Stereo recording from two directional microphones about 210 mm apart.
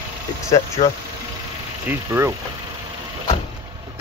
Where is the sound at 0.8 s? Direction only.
25° left (ahead or behind).